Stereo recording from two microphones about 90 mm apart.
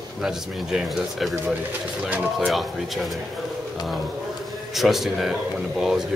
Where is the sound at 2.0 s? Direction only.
15° right (ahead or behind).